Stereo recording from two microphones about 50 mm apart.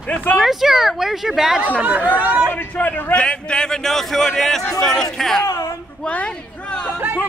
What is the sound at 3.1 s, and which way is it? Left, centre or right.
A man's voice, centre.